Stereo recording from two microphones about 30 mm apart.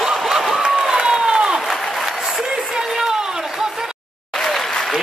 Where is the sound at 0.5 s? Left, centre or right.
Centre.